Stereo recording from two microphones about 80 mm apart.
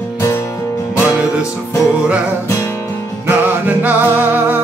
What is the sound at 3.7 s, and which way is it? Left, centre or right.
Music, right.